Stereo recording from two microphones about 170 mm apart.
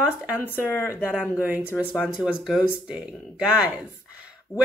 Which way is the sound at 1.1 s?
10° right (ahead or behind).